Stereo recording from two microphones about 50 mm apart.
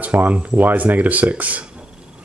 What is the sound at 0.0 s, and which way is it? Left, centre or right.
Speech, right.